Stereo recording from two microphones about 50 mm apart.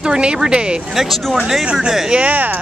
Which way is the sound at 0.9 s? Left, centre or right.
Centre.